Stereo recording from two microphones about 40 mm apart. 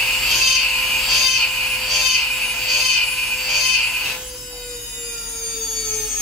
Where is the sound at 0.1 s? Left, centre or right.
Centre.